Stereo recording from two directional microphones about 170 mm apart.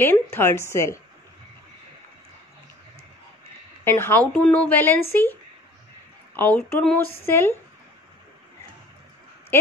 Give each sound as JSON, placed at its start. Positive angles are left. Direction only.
{"t": 0.0, "sound": "speech", "side_deg": 15}
{"t": 3.8, "sound": "speech", "side_deg": 15}